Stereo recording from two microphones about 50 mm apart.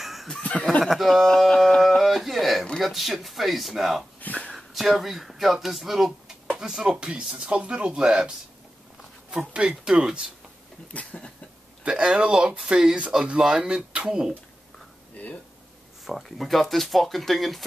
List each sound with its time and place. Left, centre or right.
0.0 s snicker: centre
0.4 s speech: left
0.8 s speech: centre
1.2 s a sound: centre
2.8 s speech: centre
4.2 s a sound: left
4.5 s speech: centre
6.8 s speech: centre
9.5 s speech: centre
11.8 s speech: centre
15.2 s a sound: left
16.1 s speech: centre